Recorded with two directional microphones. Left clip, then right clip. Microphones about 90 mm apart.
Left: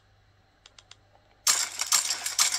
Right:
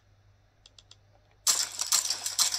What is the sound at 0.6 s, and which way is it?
Typing, 5° right (ahead or behind).